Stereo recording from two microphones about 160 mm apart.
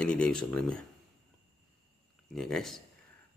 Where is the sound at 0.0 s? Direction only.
5° left (ahead or behind).